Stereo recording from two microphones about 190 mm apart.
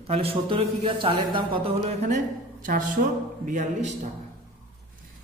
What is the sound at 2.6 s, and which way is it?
A woman's voice, 45° right (ahead or behind).